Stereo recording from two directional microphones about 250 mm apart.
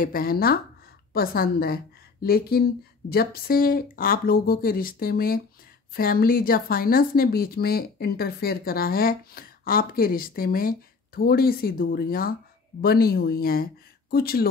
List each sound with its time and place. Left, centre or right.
0.0 s speech: left